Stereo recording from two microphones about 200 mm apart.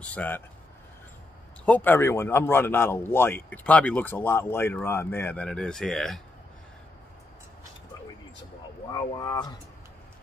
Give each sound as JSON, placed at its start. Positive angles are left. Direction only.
{"t": 0.0, "sound": "a man's voice", "side_deg": 10}
{"t": 1.7, "sound": "a man's voice", "side_deg": 10}
{"t": 8.9, "sound": "speech", "side_deg": 20}